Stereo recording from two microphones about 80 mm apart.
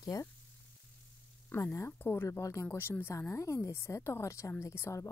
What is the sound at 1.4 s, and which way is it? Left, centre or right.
Speech, left.